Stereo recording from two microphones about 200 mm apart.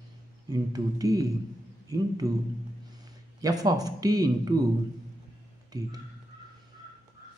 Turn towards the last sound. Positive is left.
turn(degrees=-20)  # may be behind; listen again after turning